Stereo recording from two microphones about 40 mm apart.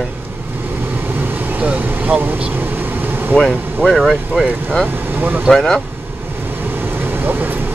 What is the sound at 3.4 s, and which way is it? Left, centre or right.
Speech, left.